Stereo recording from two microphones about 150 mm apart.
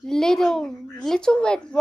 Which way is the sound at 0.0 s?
5° left (ahead or behind).